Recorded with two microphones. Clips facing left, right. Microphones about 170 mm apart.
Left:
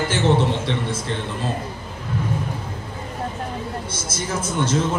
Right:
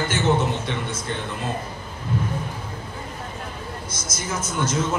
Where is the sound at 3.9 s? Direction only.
30° left (ahead or behind).